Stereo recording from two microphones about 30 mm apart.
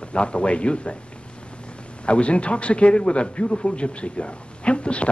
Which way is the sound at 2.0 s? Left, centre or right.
Left.